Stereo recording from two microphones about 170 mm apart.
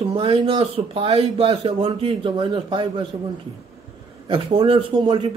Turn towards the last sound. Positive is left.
turn(degrees=-25)  # may be behind; listen again after turning